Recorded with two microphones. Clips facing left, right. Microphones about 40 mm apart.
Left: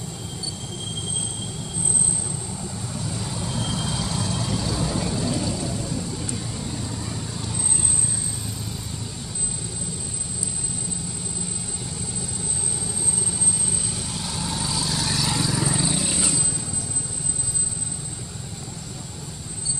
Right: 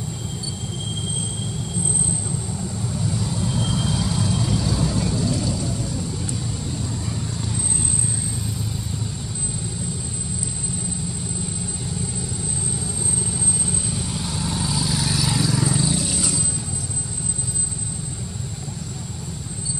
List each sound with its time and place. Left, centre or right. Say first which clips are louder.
3.3 s vehicle: right 2 dB; centre
14.1 s vehicle: right 1 dB; centre